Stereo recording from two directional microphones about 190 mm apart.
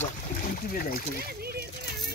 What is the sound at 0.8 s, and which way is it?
Speech, 50° left (ahead or behind).